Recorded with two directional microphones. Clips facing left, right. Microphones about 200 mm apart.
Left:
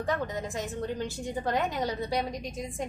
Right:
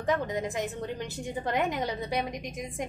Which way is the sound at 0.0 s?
15° right (ahead or behind).